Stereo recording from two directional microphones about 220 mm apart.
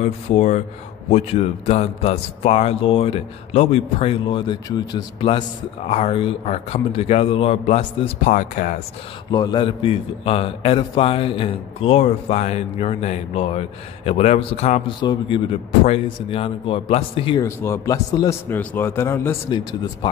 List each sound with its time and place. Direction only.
0.0 s a man's voice: 30° left (ahead or behind)
9.3 s a man's voice: 20° left (ahead or behind)
17.5 s a man's voice: 10° left (ahead or behind)